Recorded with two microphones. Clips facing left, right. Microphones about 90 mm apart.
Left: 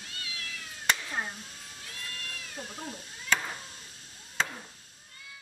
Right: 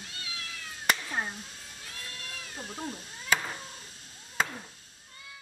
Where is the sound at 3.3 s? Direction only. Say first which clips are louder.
Right 1 dB; 5° right (ahead or behind).